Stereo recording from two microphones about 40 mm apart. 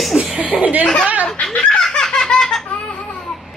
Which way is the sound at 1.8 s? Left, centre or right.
Centre.